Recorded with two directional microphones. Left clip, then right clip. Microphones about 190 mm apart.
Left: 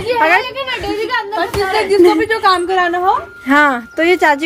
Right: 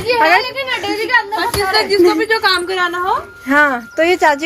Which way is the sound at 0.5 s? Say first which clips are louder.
Right 1 dB; 20° right (ahead or behind).